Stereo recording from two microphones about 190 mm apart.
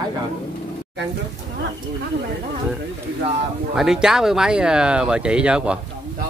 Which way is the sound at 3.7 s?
Centre (ahead or behind).